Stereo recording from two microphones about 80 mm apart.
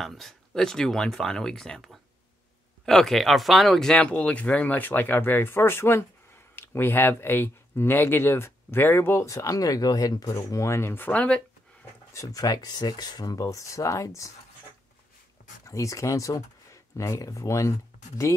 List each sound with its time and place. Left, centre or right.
0.0 s speech: centre
12.1 s speech: left
15.6 s speech: left